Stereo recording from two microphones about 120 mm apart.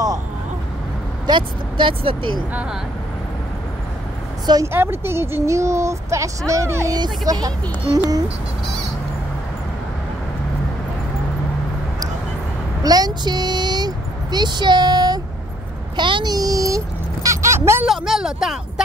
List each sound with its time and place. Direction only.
1.2 s speech: 40° right (ahead or behind)
4.7 s speech: 20° right (ahead or behind)
12.8 s a sound: 35° right (ahead or behind)
17.8 s speech: centre (ahead or behind)